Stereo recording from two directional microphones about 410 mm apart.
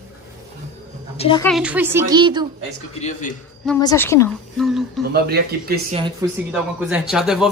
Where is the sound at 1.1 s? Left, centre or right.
Centre.